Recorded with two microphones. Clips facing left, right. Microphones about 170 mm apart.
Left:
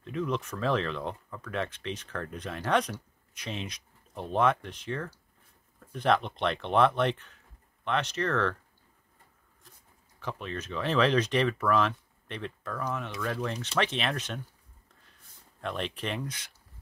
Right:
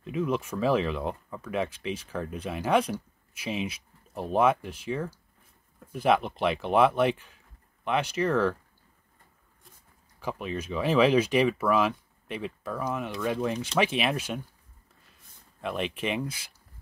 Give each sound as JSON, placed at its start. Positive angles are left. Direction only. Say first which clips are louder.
{"t": 0.0, "sound": "speech", "louder": "right 3 dB", "side_deg": -10}
{"t": 10.2, "sound": "speech", "louder": "right 4 dB", "side_deg": -10}
{"t": 15.6, "sound": "speech", "louder": "right 3 dB", "side_deg": -5}